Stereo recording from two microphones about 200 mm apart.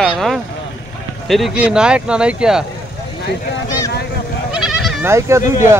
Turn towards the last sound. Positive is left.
turn(degrees=-15)  # may be behind; listen again after turning